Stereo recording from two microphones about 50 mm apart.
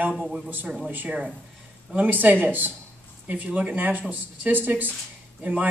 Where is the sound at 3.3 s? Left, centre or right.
Right.